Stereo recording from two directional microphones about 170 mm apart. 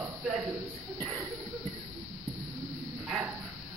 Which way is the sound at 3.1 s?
5° right (ahead or behind).